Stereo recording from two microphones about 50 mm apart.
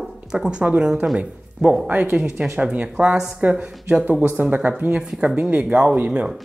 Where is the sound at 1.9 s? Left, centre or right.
Right.